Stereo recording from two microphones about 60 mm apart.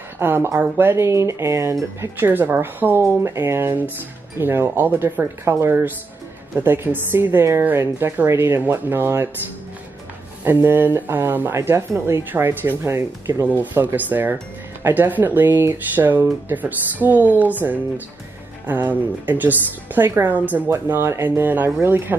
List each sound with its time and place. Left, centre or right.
0.2 s speech: right
2.0 s speech: right
10.4 s speech: right
11.5 s speech: right
13.3 s speech: right